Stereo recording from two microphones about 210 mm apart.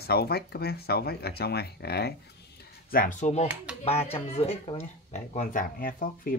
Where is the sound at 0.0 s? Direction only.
50° left (ahead or behind).